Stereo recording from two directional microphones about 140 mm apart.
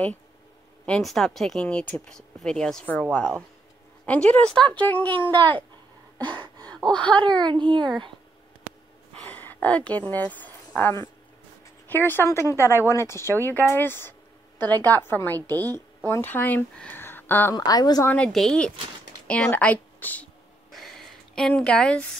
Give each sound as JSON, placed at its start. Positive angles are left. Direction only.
{"t": 0.8, "sound": "speech", "side_deg": 5}
{"t": 6.1, "sound": "gasp", "side_deg": 10}
{"t": 6.8, "sound": "speech", "side_deg": 5}
{"t": 7.4, "sound": "speech", "side_deg": -35}
{"t": 9.3, "sound": "a woman's voice", "side_deg": 15}
{"t": 15.4, "sound": "a woman's voice", "side_deg": -25}
{"t": 16.0, "sound": "speech", "side_deg": 15}
{"t": 17.6, "sound": "a woman's voice", "side_deg": 30}
{"t": 18.0, "sound": "a woman's voice", "side_deg": 10}
{"t": 20.7, "sound": "a sound", "side_deg": 0}